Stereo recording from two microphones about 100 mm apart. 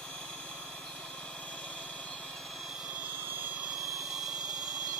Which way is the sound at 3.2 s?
20° right (ahead or behind).